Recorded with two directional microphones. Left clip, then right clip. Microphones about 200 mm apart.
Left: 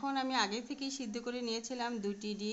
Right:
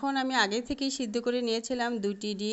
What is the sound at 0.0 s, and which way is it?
A woman's voice, 30° right (ahead or behind).